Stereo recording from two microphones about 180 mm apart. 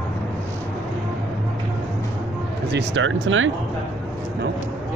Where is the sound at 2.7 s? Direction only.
80° right.